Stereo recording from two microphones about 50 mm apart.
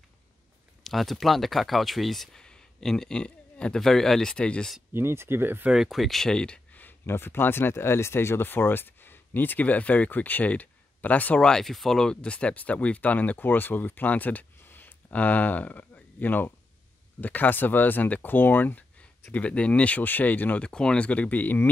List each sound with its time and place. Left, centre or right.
0.8 s speech: centre
2.4 s a sound: centre
3.8 s speech: centre
4.9 s speech: right
5.7 s speech: centre
6.7 s a sound: left
7.1 s speech: left
11.6 s speech: centre; by 14.4 s left
14.6 s a sound: left
15.1 s speech: left
19.5 s speech: left
20.0 s speech: left
20.6 s speech: centre
21.1 s speech: left